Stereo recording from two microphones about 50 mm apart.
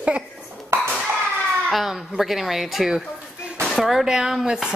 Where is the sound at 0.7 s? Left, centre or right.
Right.